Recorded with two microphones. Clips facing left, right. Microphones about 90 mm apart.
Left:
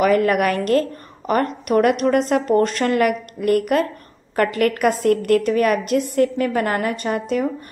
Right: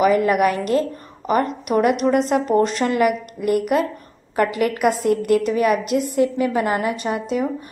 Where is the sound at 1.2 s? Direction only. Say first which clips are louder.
Even; 10° right (ahead or behind).